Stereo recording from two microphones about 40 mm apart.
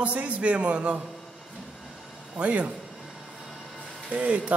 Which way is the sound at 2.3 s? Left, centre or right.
Right.